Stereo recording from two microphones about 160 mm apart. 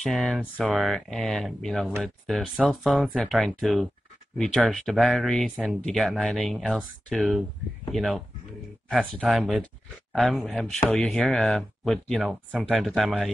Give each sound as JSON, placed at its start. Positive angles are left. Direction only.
{"t": 0.0, "sound": "speech", "side_deg": 0}